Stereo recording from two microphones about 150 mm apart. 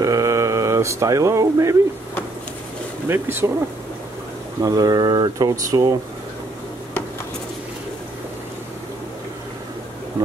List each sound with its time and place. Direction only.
0.0 s speech: 20° right (ahead or behind)
3.1 s speech: 15° right (ahead or behind)
4.6 s speech: 25° right (ahead or behind)